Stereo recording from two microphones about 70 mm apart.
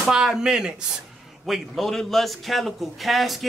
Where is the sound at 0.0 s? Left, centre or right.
Centre.